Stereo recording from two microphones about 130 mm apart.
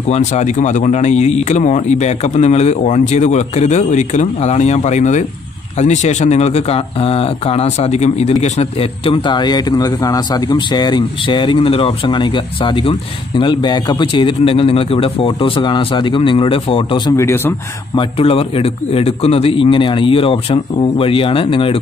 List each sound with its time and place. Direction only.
0.1 s speech: 60° left (ahead or behind); by 17.1 s 40° left (ahead or behind)
17.2 s speech: 20° left (ahead or behind)
17.9 s a man's voice: 45° left (ahead or behind)